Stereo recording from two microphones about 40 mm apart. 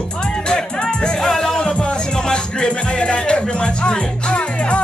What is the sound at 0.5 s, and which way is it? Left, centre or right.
Music, centre.